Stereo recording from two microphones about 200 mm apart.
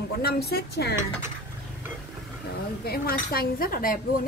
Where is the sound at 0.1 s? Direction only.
50° left (ahead or behind).